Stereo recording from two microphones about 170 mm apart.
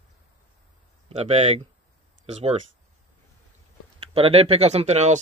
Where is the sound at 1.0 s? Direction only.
40° right (ahead or behind).